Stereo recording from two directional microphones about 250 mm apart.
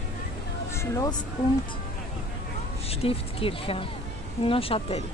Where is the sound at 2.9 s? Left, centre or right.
Left.